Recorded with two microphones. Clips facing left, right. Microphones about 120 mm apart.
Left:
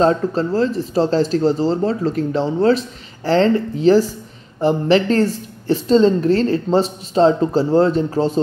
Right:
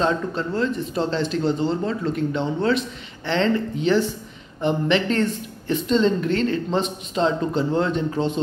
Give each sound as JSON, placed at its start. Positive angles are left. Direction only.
{"t": 0.0, "sound": "speech", "side_deg": 35}